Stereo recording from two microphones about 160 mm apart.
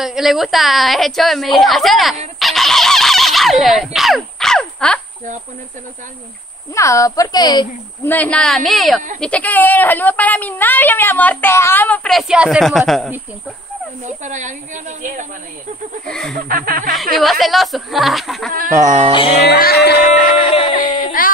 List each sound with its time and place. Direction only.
0.0 s a woman's voice: centre (ahead or behind)
2.3 s fowl: centre (ahead or behind)
6.7 s a woman's voice: 20° left (ahead or behind)
8.0 s a woman's voice: 10° left (ahead or behind)
14.0 s a woman's voice: 50° right (ahead or behind)
16.1 s a woman's voice: centre (ahead or behind)
16.3 s speech: 60° right (ahead or behind)
17.2 s a woman's voice: centre (ahead or behind)
18.9 s a woman's voice: 45° right (ahead or behind)
19.1 s a sound: 35° left (ahead or behind)
19.4 s a sound: 85° left
20.4 s a sound: 40° left (ahead or behind)
20.7 s speech: 60° left (ahead or behind)